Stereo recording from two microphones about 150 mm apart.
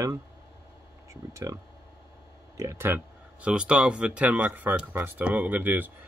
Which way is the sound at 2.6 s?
15° right (ahead or behind).